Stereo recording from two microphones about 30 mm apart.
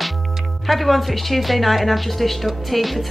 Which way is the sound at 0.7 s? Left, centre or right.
Centre.